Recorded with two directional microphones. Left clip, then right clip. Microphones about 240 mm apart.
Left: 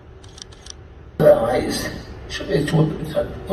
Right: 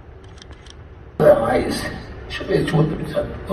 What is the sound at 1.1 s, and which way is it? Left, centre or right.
A man's voice, centre.